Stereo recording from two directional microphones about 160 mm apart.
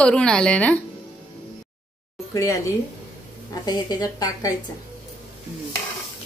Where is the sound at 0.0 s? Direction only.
5° left (ahead or behind).